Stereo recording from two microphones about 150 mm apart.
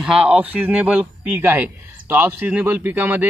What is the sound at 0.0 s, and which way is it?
Speech, 5° right (ahead or behind).